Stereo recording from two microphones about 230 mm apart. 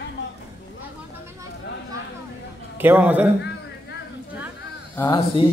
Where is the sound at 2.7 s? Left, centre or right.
Centre.